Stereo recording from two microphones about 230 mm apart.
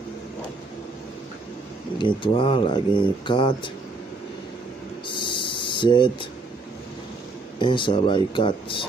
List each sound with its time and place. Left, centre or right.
2.0 s speech: left
5.0 s a sound: left
7.5 s speech: left